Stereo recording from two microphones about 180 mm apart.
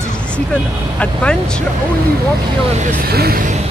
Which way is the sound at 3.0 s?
60° right (ahead or behind).